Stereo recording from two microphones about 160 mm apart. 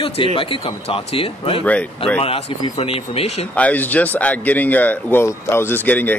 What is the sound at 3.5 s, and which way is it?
Speech, 10° left (ahead or behind).